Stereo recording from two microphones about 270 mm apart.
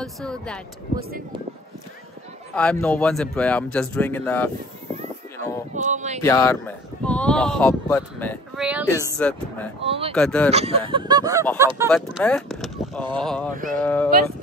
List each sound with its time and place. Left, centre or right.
0.0 s speech: centre
2.5 s speech: centre
5.8 s speech: right
6.2 s speech: centre
8.6 s speech: centre
9.1 s speech: centre
9.8 s speech: right
10.1 s speech: centre
10.5 s speech: right
11.9 s speech: centre